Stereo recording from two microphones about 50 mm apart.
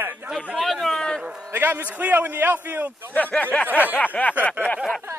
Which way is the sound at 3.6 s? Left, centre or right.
Right.